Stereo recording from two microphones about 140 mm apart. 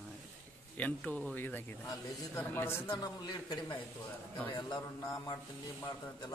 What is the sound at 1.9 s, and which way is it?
A man's voice, 25° left (ahead or behind).